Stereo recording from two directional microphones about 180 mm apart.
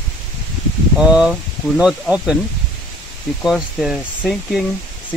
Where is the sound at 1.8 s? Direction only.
5° right (ahead or behind).